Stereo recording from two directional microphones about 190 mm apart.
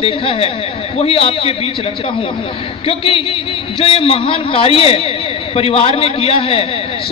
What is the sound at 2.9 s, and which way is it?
A man's voice, 30° left (ahead or behind).